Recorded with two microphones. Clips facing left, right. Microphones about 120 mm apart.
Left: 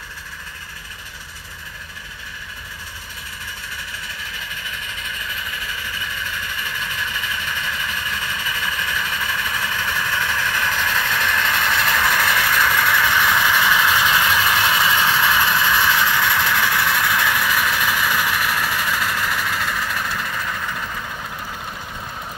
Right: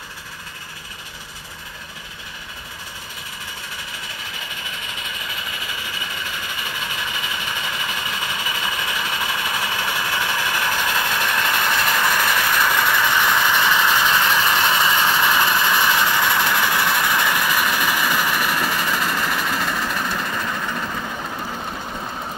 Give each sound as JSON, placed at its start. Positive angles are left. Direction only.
{"t": 4.9, "sound": "vehicle", "side_deg": -15}